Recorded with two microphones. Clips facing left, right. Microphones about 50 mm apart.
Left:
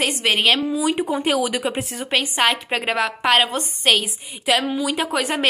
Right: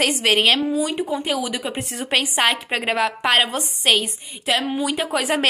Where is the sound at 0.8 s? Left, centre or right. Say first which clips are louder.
Left 3 dB; left.